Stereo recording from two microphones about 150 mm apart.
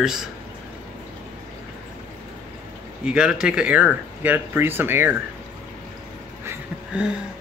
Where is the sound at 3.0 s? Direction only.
5° right (ahead or behind).